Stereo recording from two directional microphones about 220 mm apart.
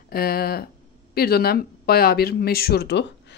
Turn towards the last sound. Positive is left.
turn(degrees=50)  # may be behind; listen again after turning